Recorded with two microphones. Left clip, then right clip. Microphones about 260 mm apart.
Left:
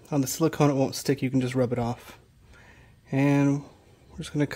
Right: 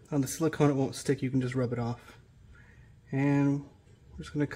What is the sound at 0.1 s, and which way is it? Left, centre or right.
Speech, left.